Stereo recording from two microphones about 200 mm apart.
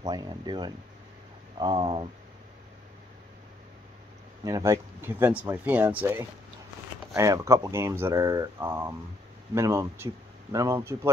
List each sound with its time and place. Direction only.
0.0 s speech: 20° right (ahead or behind)
4.5 s speech: 15° right (ahead or behind)